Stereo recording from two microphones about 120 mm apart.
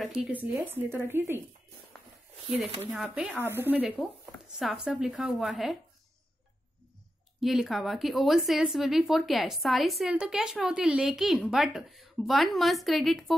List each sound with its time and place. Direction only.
0.0 s a woman's voice: 5° right (ahead or behind)
0.7 s speech: 20° right (ahead or behind)
3.0 s a woman's voice: 10° right (ahead or behind)
3.8 s a woman's voice: centre (ahead or behind)
7.3 s a woman's voice: centre (ahead or behind)